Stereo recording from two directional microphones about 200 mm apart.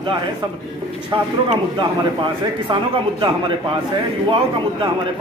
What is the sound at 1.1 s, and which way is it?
A man's voice, 25° right (ahead or behind).